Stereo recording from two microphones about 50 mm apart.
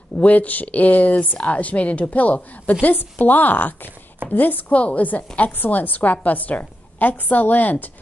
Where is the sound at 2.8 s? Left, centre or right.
Left.